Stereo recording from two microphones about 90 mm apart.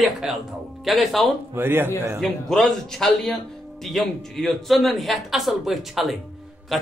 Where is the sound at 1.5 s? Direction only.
25° right (ahead or behind).